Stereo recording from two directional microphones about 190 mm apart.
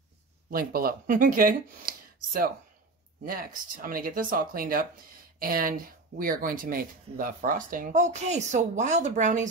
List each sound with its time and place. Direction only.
0.5 s speech: 50° right (ahead or behind)